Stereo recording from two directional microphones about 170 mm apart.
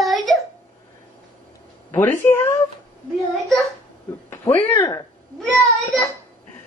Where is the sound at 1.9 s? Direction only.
10° left (ahead or behind).